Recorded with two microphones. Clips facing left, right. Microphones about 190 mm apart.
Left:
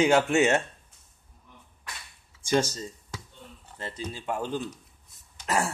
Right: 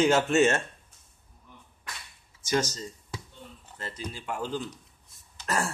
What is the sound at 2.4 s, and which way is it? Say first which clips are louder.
Speech: left 3 dB; 30° left (ahead or behind).